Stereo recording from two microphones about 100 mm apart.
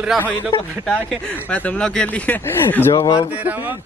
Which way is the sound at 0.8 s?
10° left (ahead or behind).